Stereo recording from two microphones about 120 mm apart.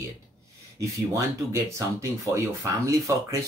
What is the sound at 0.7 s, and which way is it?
Speech, 25° right (ahead or behind).